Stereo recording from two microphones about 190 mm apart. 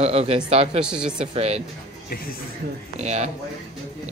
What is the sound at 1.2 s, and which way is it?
Speech, 35° right (ahead or behind).